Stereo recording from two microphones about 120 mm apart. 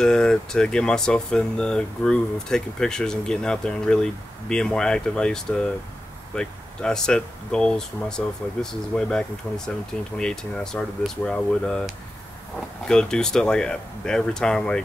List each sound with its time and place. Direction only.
0.0 s speech: 5° left (ahead or behind)
9.5 s speech: 20° left (ahead or behind)
10.1 s speech: 5° left (ahead or behind)